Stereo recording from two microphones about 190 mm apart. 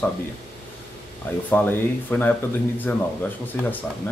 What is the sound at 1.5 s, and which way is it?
Speech, 10° left (ahead or behind).